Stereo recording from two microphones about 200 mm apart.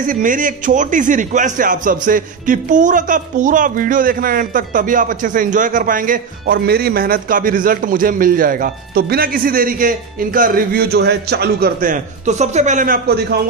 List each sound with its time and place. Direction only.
0.0 s a man's voice: 40° right (ahead or behind)